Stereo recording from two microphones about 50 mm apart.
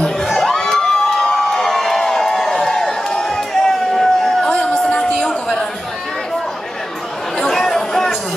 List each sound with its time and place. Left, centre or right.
0.0 s crowd: centre
4.5 s music: left
5.1 s a sound: centre
7.3 s chatter: centre